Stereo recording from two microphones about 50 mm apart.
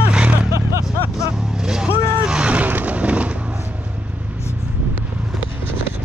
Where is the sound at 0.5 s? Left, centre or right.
Right.